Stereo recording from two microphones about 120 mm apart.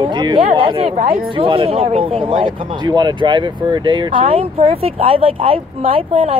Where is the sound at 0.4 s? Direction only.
50° right (ahead or behind).